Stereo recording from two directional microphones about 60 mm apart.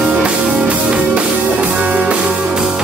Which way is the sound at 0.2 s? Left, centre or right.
Centre.